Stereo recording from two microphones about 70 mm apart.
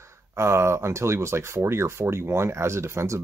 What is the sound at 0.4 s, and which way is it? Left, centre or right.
Speech, right.